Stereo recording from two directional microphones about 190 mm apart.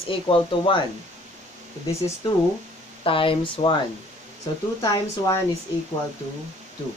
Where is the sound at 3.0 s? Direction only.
30° left (ahead or behind).